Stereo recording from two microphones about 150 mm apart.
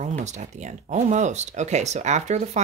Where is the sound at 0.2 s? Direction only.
50° right (ahead or behind).